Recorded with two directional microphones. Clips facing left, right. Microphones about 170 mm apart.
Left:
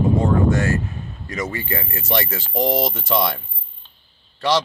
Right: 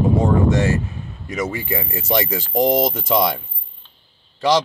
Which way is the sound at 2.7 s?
Centre (ahead or behind).